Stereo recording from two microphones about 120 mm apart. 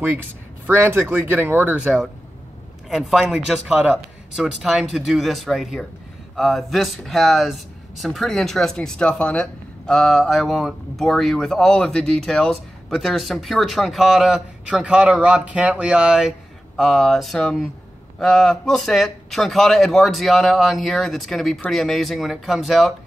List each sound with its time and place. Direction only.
0.0 s speech: 15° right (ahead or behind)
2.9 s speech: centre (ahead or behind)